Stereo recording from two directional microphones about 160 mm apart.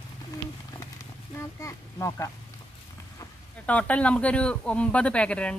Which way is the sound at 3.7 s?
10° left (ahead or behind).